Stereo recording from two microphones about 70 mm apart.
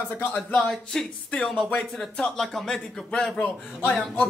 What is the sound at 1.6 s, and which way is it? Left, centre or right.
A man's voice, centre.